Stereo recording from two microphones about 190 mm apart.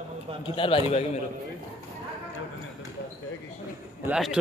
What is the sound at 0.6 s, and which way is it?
Speech, 30° left (ahead or behind).